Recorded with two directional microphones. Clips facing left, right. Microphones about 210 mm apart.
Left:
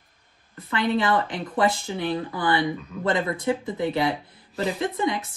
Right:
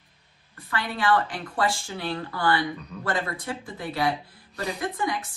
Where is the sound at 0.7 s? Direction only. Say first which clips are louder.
Left 3 dB; 20° left (ahead or behind).